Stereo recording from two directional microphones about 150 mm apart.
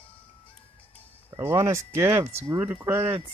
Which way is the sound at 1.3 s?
20° right (ahead or behind).